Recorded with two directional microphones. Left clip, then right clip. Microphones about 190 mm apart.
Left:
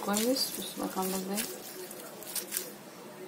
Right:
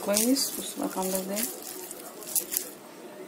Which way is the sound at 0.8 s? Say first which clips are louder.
Right 4 dB; 20° right (ahead or behind).